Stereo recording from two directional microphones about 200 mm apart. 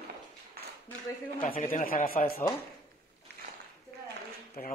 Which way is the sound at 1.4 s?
40° left (ahead or behind).